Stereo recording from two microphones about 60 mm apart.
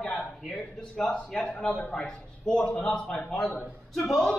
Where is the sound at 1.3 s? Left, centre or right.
Centre.